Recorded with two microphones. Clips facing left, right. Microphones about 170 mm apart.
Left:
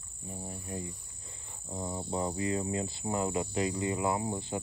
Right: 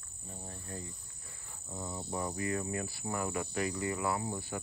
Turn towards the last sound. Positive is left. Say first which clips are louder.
# left 3 dB
turn(degrees=20)  # may be behind; listen again after turning